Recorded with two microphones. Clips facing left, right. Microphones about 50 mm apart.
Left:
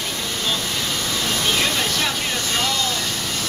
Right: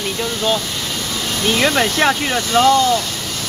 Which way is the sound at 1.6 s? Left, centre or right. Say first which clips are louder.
Right 7 dB; right.